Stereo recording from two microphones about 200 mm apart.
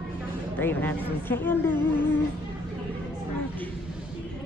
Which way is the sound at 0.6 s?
10° left (ahead or behind).